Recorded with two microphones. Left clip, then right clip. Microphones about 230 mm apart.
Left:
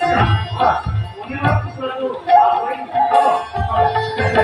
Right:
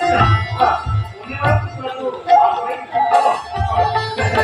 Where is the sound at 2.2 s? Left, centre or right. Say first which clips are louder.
Even; right.